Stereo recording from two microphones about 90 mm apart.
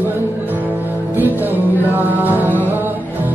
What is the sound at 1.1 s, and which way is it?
Music, 20° right (ahead or behind).